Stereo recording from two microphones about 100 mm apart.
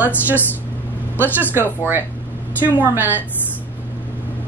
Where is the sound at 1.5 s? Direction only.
20° right (ahead or behind).